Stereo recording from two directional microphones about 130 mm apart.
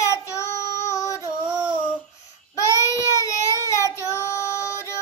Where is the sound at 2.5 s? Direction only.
25° left (ahead or behind).